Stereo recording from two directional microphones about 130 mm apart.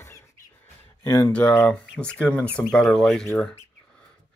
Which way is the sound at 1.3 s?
10° left (ahead or behind).